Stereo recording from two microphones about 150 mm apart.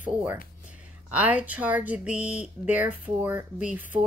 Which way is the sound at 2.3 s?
10° right (ahead or behind).